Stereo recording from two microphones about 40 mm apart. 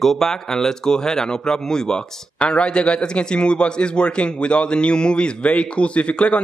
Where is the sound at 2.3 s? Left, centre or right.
Left.